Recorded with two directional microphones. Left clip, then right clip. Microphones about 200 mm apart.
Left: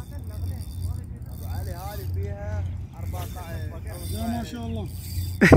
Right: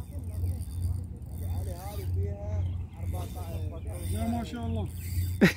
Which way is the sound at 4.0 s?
Centre (ahead or behind).